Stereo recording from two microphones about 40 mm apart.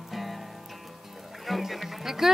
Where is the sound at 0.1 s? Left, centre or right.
Centre.